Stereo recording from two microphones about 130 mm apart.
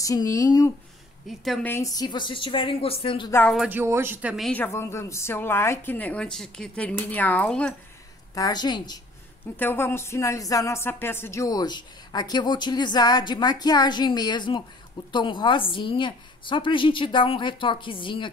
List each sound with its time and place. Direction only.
0.0 s speech: 25° left (ahead or behind)
1.3 s speech: centre (ahead or behind)
1.6 s a woman's voice: 15° left (ahead or behind)
1.9 s speech: 30° left (ahead or behind)
3.6 s speech: 15° right (ahead or behind)
4.4 s a woman's voice: 10° left (ahead or behind)
4.7 s a woman's voice: 20° left (ahead or behind)
8.4 s speech: 30° left (ahead or behind)
9.6 s speech: 15° left (ahead or behind); by 18.3 s 40° left (ahead or behind)